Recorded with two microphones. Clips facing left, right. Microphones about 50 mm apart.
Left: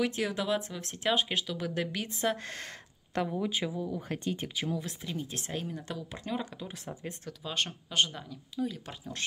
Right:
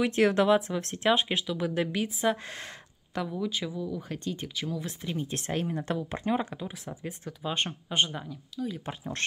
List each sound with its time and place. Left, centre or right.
0.1 s speech: right
0.5 s speech: right
1.3 s speech: centre
3.2 s speech: centre
4.8 s speech: centre
5.3 s speech: right
6.9 s speech: centre